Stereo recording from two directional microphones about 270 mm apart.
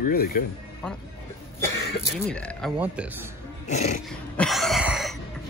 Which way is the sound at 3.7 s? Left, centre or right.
Left.